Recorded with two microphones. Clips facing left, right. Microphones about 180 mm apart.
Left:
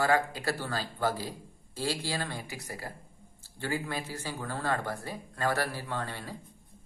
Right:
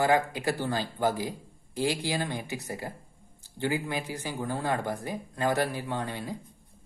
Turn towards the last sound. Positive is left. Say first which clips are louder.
# right 4 dB
turn(degrees=-15)  # may be behind; listen again after turning